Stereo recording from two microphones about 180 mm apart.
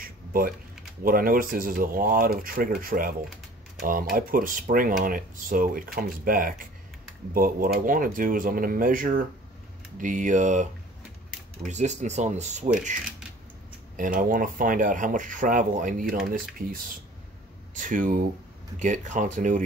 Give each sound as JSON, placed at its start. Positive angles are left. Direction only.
{"t": 0.3, "sound": "speech", "side_deg": -55}
{"t": 13.9, "sound": "speech", "side_deg": -50}